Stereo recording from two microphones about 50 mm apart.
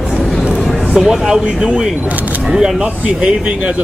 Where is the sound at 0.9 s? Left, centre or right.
Centre.